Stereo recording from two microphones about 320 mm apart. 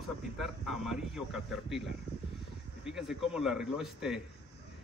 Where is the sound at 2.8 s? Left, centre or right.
Centre.